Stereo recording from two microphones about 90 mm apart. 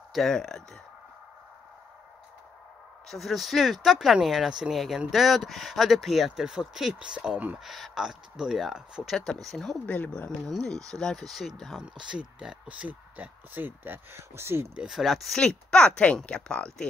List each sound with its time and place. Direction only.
0.1 s speech: 5° left (ahead or behind)
3.1 s speech: centre (ahead or behind); by 7.5 s 15° right (ahead or behind)
7.5 s speech: centre (ahead or behind)
9.8 s speech: 15° left (ahead or behind)
10.4 s speech: 5° left (ahead or behind)
11.8 s speech: 10° right (ahead or behind); by 14.7 s 25° right (ahead or behind)
14.8 s speech: 5° right (ahead or behind)